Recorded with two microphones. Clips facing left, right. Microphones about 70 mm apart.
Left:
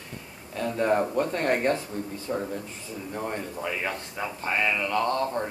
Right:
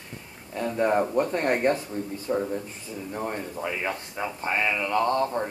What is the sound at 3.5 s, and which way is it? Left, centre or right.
Speech, centre.